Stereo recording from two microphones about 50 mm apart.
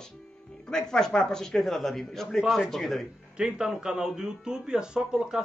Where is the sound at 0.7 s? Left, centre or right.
Centre.